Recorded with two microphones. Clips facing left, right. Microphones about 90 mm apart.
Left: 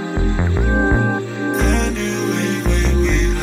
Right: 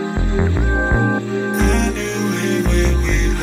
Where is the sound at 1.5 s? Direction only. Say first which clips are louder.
Left 1 dB; centre (ahead or behind).